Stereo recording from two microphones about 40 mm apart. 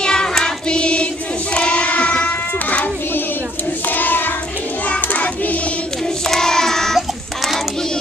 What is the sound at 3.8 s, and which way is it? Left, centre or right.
Child singing, left.